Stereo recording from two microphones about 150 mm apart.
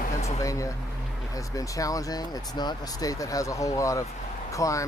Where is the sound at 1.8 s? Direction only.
25° left (ahead or behind).